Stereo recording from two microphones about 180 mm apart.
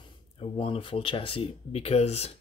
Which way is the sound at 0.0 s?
30° left (ahead or behind).